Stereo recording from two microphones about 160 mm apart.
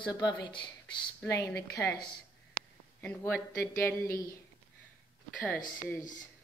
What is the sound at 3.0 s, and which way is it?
Speech, 10° left (ahead or behind).